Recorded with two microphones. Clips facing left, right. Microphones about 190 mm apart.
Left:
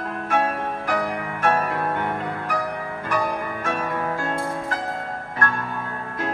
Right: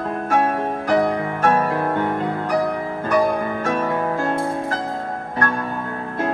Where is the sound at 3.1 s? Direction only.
35° right (ahead or behind).